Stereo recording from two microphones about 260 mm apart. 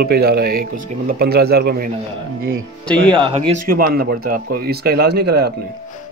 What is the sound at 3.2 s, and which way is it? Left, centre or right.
Speech, right.